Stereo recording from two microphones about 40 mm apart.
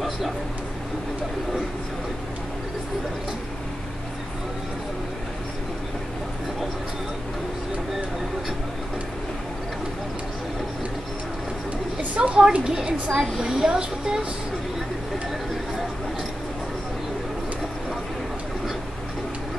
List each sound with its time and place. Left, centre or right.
12.2 s a woman's voice: right
13.4 s speech: centre
13.7 s a woman's voice: right